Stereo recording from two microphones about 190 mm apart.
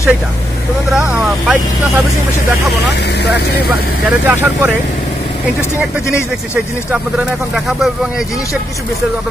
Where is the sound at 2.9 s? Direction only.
60° left (ahead or behind).